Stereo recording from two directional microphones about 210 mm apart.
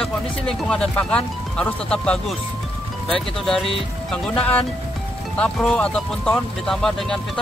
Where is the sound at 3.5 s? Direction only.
Centre (ahead or behind).